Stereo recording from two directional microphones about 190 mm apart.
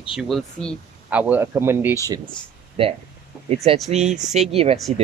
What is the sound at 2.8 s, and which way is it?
Speech, 30° right (ahead or behind).